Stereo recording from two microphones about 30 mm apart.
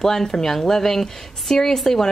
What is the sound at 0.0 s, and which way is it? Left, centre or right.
A woman's voice, centre.